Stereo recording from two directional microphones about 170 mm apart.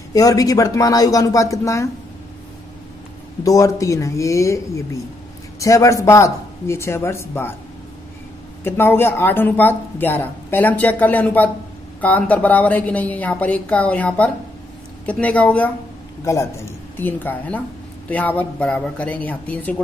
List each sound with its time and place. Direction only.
0.1 s speech: 20° left (ahead or behind)
3.4 s speech: 20° left (ahead or behind)
8.6 s speech: 15° left (ahead or behind)
16.9 s speech: 10° left (ahead or behind)